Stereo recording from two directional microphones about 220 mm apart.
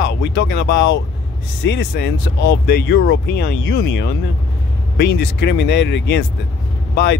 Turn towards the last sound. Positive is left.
turn(degrees=55)  # may be behind; listen again after turning